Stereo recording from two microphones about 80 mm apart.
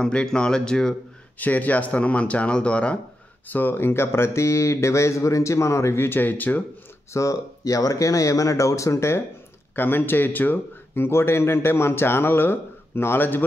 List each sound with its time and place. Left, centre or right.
0.0 s speech: centre
1.4 s speech: left
3.5 s speech: left
7.1 s speech: left
9.8 s speech: left